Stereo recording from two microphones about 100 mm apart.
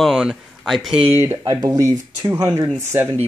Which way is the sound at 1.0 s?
25° right (ahead or behind).